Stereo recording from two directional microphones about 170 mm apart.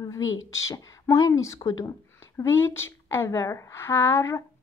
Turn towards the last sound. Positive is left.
turn(degrees=15)  # may be behind; listen again after turning